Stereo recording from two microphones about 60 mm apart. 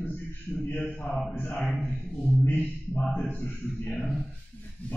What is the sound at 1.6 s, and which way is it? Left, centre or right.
Speech, centre.